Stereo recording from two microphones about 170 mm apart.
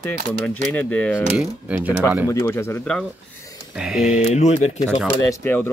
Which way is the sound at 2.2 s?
15° left (ahead or behind).